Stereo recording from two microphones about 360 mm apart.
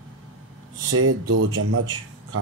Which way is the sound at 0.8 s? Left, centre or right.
Right.